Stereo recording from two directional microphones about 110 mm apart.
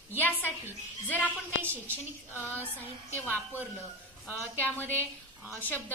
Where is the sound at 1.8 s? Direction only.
20° left (ahead or behind).